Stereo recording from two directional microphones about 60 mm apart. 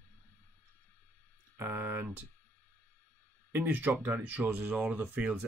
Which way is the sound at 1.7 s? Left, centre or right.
Right.